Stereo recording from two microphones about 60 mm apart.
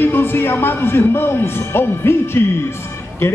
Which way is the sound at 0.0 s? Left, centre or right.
Left.